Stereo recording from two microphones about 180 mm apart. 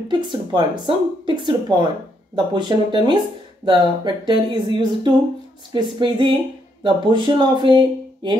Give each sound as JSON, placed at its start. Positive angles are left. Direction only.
{"t": 0.1, "sound": "speech", "side_deg": -25}